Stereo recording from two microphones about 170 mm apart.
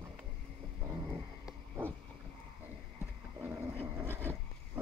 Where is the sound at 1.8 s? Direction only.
15° right (ahead or behind).